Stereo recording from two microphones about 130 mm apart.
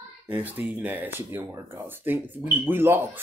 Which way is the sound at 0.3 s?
10° right (ahead or behind).